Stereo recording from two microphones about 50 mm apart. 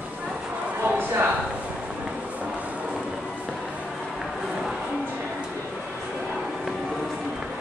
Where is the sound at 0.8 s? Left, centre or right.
Right.